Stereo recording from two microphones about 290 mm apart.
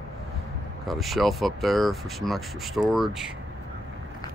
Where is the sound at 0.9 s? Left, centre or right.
Centre.